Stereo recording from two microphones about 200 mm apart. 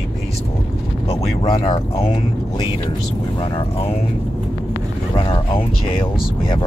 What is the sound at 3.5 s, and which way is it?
Speech, 30° left (ahead or behind).